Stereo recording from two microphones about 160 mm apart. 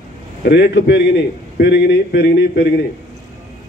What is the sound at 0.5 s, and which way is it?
A man's voice, 90° left.